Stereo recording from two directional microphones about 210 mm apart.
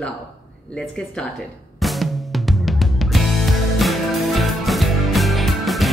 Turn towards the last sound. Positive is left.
turn(degrees=0)  # may be behind; listen again after turning